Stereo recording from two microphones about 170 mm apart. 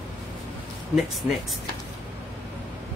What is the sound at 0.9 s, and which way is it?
Speech, centre (ahead or behind).